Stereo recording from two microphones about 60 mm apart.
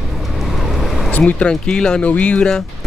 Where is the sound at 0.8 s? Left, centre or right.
Centre.